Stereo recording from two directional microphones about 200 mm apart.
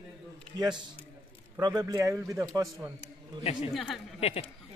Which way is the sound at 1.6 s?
20° right (ahead or behind).